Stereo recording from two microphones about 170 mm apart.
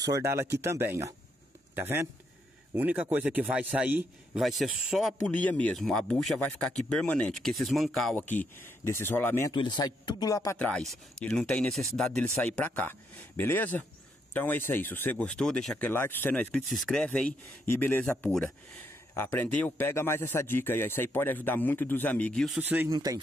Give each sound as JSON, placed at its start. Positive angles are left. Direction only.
{"t": 0.0, "sound": "a man's voice", "side_deg": -20}
{"t": 9.5, "sound": "speech", "side_deg": 25}
{"t": 10.6, "sound": "a man's voice", "side_deg": 5}
{"t": 22.6, "sound": "a man's voice", "side_deg": -10}
{"t": 22.8, "sound": "speech", "side_deg": -20}